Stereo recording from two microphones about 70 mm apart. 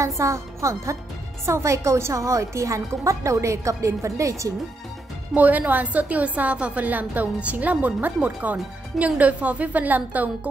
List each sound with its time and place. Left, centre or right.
0.0 s speech: right
5.3 s a woman's voice: right